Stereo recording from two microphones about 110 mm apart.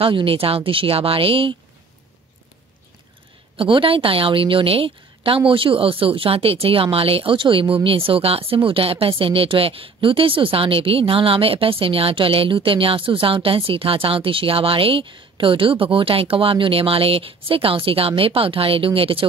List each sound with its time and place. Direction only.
0.0 s speech: 55° right (ahead or behind)
3.5 s speech: 55° right (ahead or behind)